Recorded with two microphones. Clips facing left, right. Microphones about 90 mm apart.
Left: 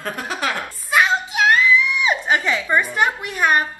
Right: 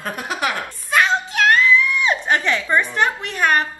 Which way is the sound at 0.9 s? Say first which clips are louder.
Even; 5° left (ahead or behind).